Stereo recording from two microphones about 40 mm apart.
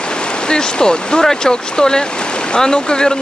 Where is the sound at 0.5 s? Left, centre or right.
Left.